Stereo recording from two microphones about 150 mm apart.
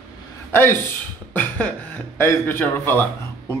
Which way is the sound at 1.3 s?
10° left (ahead or behind).